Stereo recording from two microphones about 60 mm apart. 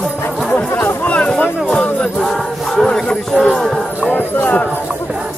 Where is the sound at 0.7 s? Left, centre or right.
Left.